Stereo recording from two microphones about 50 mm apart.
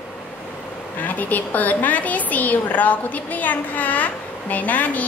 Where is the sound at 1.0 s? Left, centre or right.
Left.